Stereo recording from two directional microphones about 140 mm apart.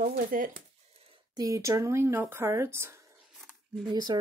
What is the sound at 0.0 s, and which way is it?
Speech, 85° right.